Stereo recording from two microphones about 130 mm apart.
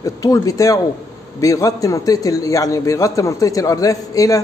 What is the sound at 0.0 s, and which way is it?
A man's voice, 25° left (ahead or behind).